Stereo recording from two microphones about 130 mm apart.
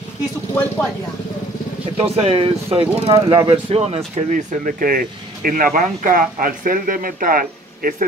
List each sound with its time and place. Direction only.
2.0 s speech: 50° right (ahead or behind)
4.3 s speech: 90° right